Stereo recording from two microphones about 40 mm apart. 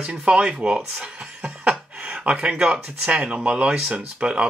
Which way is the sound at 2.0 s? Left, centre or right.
Right.